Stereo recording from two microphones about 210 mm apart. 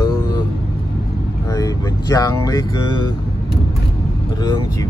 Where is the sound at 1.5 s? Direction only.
15° left (ahead or behind).